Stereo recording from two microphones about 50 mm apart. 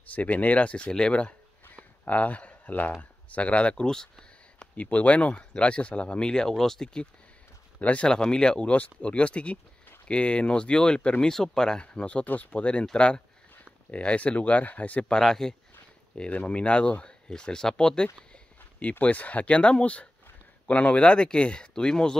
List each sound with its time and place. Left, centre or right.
0.1 s speech: left
2.0 s speech: left; by 4.6 s centre
4.7 s speech: left; by 7.1 s centre
7.8 s speech: left
8.1 s speech: centre
15.1 s speech: centre
16.3 s speech: left